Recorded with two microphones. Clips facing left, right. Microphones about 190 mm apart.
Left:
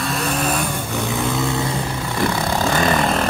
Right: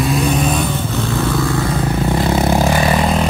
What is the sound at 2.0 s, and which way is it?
Vehicle, 25° right (ahead or behind).